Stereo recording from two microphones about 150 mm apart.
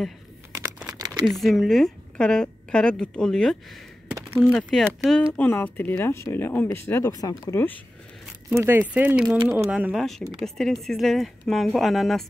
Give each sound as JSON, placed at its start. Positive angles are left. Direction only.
{"t": 0.6, "sound": "crumpling", "side_deg": -10}
{"t": 0.9, "sound": "a sound", "side_deg": -25}
{"t": 1.2, "sound": "a woman's voice", "side_deg": 0}
{"t": 8.5, "sound": "speech", "side_deg": -15}
{"t": 10.4, "sound": "a woman's voice", "side_deg": 0}